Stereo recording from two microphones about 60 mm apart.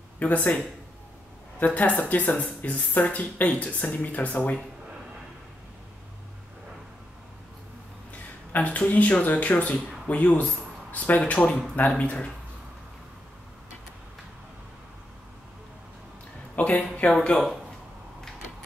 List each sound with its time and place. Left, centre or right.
0.2 s speech: left
1.6 s speech: left
8.1 s speech: left
16.5 s speech: left